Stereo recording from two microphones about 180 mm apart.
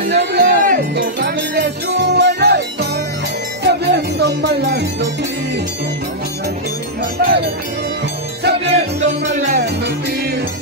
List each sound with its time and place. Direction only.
0.1 s music: 65° right (ahead or behind)
7.2 s music: 65° right (ahead or behind)
8.7 s music: 40° right (ahead or behind)
9.6 s music: 70° right (ahead or behind)